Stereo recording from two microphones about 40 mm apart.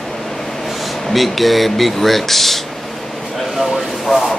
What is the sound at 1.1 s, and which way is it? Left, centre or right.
Speech, centre.